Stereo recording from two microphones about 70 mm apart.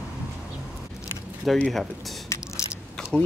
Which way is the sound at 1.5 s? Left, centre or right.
Centre.